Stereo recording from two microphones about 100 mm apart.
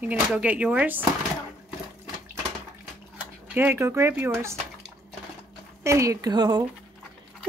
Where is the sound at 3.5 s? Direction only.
25° right (ahead or behind).